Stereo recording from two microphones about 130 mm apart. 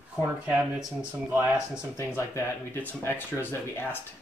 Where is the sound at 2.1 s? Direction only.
20° left (ahead or behind).